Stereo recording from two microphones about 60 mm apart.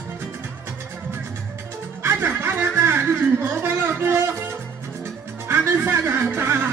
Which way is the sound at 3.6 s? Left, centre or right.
Right.